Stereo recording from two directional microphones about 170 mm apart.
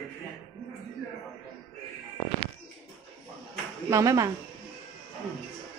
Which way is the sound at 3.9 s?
20° right (ahead or behind).